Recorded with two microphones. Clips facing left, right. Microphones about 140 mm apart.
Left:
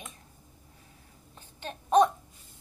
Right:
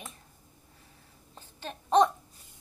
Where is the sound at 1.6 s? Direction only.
15° left (ahead or behind).